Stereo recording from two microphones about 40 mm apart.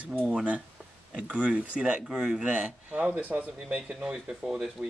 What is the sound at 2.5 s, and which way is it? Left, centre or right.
Speech, right.